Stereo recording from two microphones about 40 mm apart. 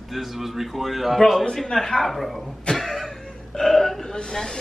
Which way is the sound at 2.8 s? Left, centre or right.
Centre.